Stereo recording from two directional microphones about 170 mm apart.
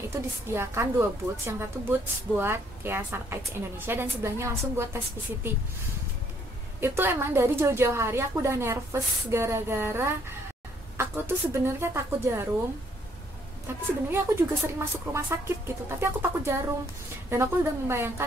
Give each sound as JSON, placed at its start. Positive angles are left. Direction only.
{"t": 0.1, "sound": "a woman's voice", "side_deg": -15}
{"t": 6.8, "sound": "a woman's voice", "side_deg": -15}
{"t": 13.7, "sound": "a woman's voice", "side_deg": -15}